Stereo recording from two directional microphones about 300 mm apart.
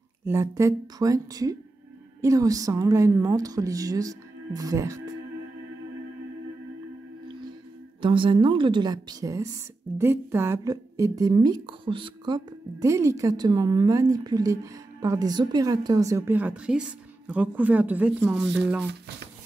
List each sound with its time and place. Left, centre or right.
0.2 s a woman's voice: centre
8.0 s a woman's voice: centre